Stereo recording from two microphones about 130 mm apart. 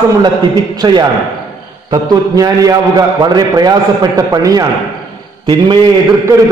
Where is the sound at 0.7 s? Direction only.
35° right (ahead or behind).